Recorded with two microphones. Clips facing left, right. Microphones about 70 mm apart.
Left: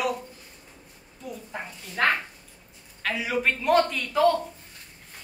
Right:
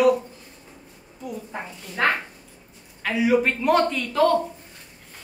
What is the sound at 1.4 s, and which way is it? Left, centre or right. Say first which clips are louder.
A woman's voice: right 3 dB; centre.